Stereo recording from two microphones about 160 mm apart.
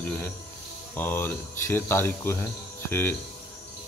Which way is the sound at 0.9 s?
10° left (ahead or behind).